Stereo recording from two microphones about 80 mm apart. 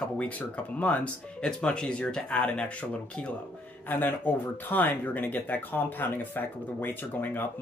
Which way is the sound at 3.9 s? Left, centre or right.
Left.